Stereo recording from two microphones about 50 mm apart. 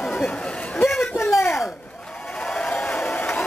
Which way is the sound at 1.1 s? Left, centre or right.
Left.